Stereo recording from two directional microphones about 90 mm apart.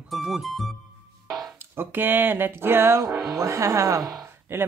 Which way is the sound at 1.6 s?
25° right (ahead or behind).